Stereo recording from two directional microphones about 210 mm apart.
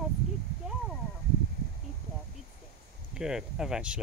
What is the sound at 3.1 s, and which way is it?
Speech, 5° right (ahead or behind).